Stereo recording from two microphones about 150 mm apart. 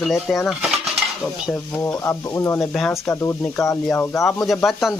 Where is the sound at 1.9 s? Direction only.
20° left (ahead or behind).